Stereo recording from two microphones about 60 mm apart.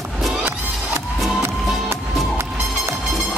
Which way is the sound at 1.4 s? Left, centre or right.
Right.